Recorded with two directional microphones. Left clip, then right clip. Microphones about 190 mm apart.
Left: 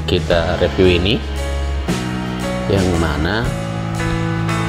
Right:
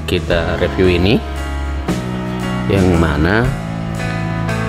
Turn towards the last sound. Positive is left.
turn(degrees=-15)  # may be behind; listen again after turning